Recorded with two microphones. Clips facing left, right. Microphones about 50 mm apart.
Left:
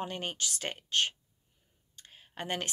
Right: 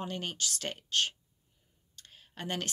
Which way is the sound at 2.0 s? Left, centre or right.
Centre.